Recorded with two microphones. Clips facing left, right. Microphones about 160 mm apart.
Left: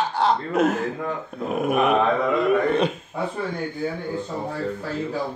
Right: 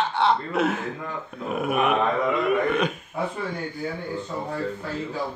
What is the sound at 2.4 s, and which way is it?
Throat clearing, 35° left (ahead or behind).